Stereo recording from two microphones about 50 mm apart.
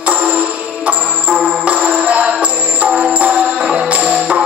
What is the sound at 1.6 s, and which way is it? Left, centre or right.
Music, right.